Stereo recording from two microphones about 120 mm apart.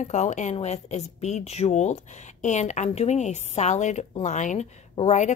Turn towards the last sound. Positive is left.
turn(degrees=70)  # may be behind; listen again after turning